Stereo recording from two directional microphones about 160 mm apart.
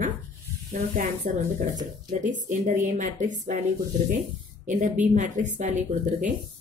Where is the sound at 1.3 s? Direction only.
50° right (ahead or behind).